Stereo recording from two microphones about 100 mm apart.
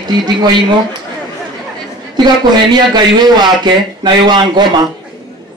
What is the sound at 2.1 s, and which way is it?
A man's voice, 45° right (ahead or behind).